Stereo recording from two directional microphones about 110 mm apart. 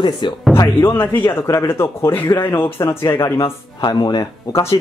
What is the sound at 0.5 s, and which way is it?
Speech, 20° left (ahead or behind).